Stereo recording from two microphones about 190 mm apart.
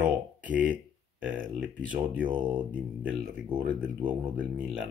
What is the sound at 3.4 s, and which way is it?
Speech, 25° right (ahead or behind).